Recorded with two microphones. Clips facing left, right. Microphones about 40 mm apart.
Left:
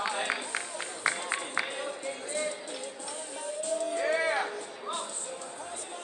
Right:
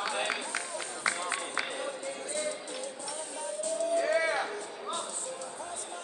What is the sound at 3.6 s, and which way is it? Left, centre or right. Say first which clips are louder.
Music: right 1 dB; left.